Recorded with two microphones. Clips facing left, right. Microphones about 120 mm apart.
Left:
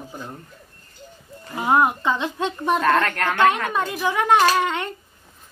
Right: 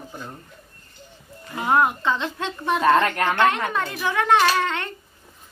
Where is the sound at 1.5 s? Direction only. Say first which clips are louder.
Left 1 dB; 20° left (ahead or behind).